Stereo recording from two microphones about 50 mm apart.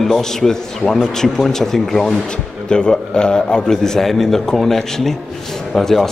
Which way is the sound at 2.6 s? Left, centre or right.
Centre.